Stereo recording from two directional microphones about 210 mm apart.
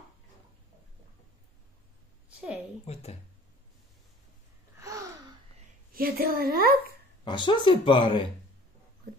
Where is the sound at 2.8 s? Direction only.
30° left (ahead or behind).